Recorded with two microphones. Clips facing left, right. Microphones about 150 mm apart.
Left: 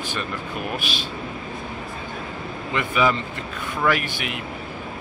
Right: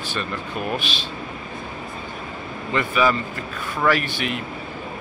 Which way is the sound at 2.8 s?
15° left (ahead or behind).